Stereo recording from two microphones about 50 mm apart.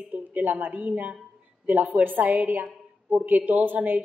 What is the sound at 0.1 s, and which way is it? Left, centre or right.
A woman's voice, right.